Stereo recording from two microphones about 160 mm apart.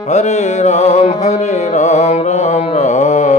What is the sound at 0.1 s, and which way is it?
Music, 45° left (ahead or behind).